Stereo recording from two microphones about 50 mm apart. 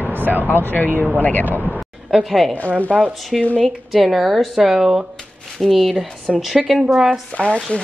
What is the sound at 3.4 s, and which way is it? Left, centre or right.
Speech, left.